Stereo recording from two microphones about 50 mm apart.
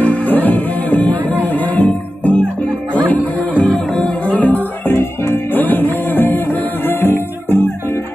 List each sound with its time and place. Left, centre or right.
0.0 s music: left
4.8 s music: left